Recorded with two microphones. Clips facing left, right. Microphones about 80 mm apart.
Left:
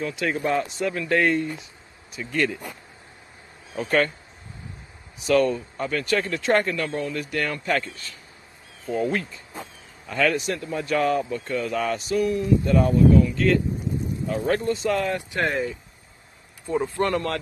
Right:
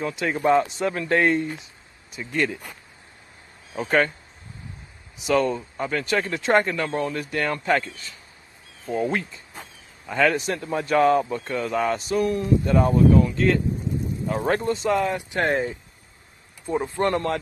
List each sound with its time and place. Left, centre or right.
0.0 s a man's voice: right
5.2 s a man's voice: right
8.9 s a man's voice: right
10.3 s a man's voice: right
15.0 s speech: centre
15.4 s a man's voice: right
16.6 s a man's voice: centre